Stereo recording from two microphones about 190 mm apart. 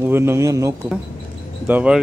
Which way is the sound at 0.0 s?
15° right (ahead or behind).